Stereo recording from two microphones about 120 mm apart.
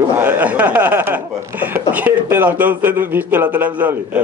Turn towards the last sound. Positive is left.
turn(degrees=-15)  # may be behind; listen again after turning